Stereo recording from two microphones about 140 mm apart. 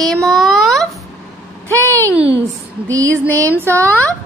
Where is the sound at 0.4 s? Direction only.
Centre (ahead or behind).